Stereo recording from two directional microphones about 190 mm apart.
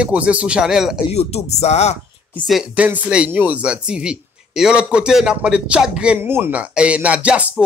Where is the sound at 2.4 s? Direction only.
5° right (ahead or behind).